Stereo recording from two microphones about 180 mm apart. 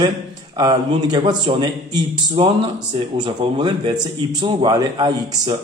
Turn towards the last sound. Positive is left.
turn(degrees=-25)  # may be behind; listen again after turning